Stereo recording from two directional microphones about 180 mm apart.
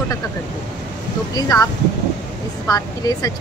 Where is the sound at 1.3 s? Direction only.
20° left (ahead or behind).